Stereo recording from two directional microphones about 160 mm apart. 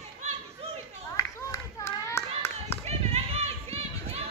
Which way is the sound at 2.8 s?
40° right (ahead or behind).